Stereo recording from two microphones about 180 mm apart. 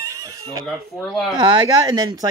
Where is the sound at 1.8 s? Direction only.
20° right (ahead or behind).